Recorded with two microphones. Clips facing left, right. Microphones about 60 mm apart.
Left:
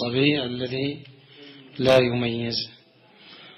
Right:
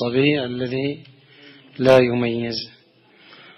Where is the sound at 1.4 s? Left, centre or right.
Right.